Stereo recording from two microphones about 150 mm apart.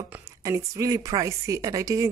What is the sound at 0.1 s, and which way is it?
Speech, 20° right (ahead or behind).